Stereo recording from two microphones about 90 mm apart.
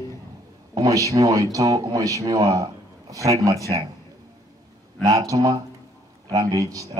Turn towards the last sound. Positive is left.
turn(degrees=-40)  # may be behind; listen again after turning